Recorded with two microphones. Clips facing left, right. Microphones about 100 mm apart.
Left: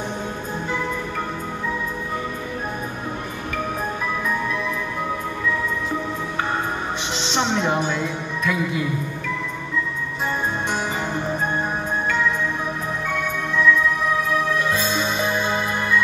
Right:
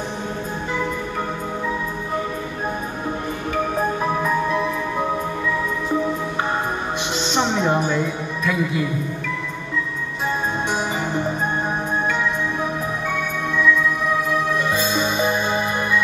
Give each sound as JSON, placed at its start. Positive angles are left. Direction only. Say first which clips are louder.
{"t": 4.0, "sound": "music", "louder": "right 4 dB", "side_deg": -30}
{"t": 7.2, "sound": "music", "louder": "right 1 dB", "side_deg": -5}
{"t": 7.7, "sound": "a woman's voice", "louder": "right 2 dB", "side_deg": -5}
{"t": 14.0, "sound": "music", "louder": "right 1 dB", "side_deg": -5}